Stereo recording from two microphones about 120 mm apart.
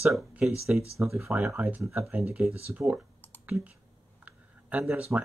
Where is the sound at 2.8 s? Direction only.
15° right (ahead or behind).